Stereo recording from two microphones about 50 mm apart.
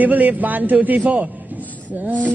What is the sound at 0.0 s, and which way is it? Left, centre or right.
A man's voice, right.